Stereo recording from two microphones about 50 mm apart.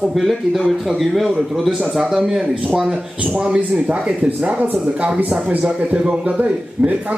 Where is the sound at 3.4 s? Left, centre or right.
Right.